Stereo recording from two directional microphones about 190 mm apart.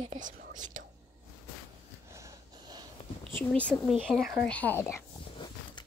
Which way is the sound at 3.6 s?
Centre (ahead or behind).